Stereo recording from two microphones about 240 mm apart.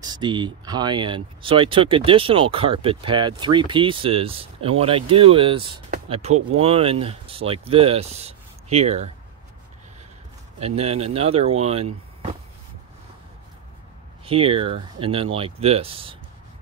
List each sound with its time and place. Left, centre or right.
0.0 s speech: centre
10.6 s speech: right
14.2 s speech: right